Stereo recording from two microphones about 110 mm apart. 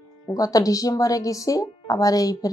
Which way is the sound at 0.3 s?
35° left (ahead or behind).